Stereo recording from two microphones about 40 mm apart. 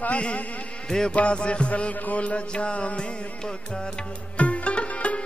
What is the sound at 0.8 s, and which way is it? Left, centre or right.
Mantra, centre.